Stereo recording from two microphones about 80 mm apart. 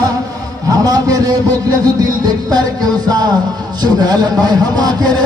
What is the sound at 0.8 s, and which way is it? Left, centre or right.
Speech, right.